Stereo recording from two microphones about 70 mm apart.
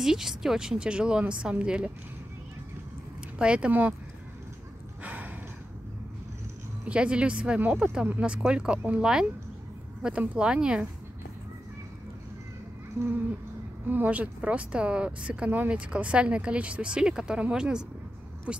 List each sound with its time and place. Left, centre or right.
0.0 s a woman's voice: centre
3.3 s a woman's voice: centre
5.0 s a sound: right
6.9 s a woman's voice: centre
13.8 s a woman's voice: right